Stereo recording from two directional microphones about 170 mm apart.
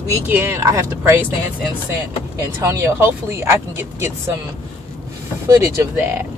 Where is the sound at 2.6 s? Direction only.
15° right (ahead or behind).